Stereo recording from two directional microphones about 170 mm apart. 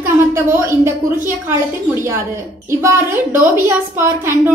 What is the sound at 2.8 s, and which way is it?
A woman's voice, 15° right (ahead or behind).